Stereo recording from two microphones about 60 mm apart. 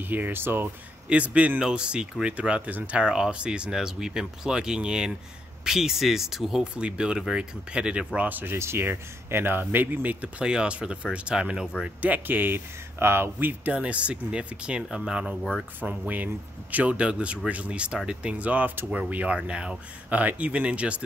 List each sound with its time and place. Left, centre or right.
0.1 s speech: right
1.0 s speech: right
8.3 s speech: right
8.5 s speech: right
10.2 s speech: centre
12.0 s speech: right
13.7 s speech: right
15.8 s speech: right